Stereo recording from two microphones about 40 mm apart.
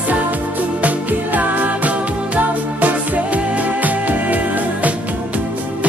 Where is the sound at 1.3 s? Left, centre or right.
Right.